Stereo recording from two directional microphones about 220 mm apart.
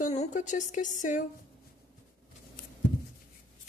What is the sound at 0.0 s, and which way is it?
Speech, 30° left (ahead or behind).